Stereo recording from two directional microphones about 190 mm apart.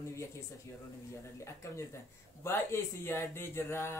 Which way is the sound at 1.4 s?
15° left (ahead or behind).